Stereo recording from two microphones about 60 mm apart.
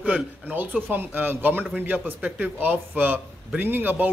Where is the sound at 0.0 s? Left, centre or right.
Right.